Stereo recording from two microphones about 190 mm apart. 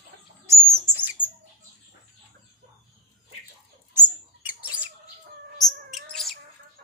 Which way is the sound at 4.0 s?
10° right (ahead or behind).